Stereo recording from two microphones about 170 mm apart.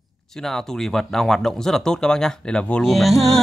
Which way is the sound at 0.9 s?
5° left (ahead or behind).